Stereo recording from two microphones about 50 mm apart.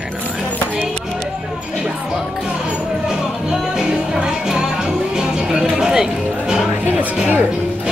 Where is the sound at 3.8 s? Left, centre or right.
Centre.